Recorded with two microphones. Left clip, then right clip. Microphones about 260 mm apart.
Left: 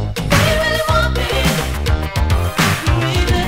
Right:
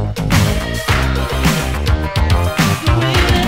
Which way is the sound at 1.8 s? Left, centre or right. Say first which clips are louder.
Right 2 dB; centre.